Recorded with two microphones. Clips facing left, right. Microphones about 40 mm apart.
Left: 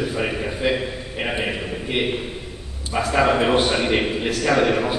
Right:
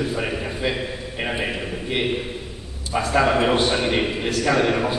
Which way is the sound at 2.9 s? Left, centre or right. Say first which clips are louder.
Even; centre.